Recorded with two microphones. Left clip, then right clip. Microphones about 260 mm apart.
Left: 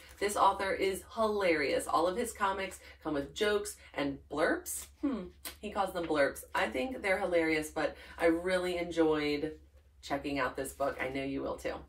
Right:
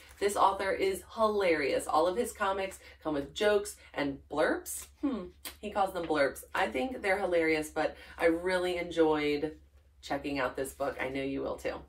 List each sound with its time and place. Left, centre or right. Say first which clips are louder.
0.2 s a woman's voice: right 1 dB; centre